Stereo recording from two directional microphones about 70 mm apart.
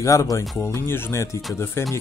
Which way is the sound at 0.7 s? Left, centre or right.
Left.